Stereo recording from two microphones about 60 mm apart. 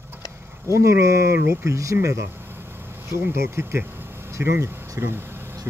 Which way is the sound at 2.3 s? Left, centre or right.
Right.